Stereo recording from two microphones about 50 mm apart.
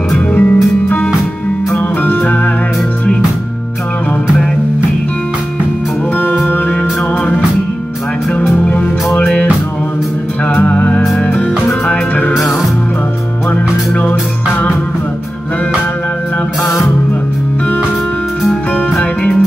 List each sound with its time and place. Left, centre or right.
0.3 s music: left
2.0 s music: left
8.6 s music: left
10.5 s music: left
13.5 s music: left